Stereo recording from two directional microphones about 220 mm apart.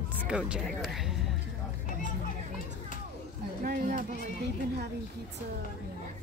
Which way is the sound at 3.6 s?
35° right (ahead or behind).